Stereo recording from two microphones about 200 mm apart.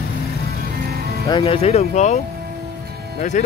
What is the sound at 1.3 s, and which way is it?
Speech, 25° left (ahead or behind).